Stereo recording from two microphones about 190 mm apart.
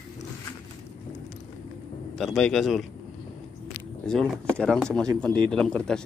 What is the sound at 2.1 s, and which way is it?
Speech, centre (ahead or behind).